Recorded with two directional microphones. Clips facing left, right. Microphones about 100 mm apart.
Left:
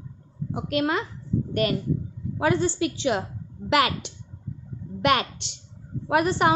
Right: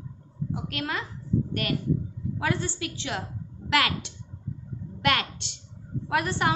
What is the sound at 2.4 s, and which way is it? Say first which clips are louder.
A woman's voice: left 7 dB; 20° left (ahead or behind).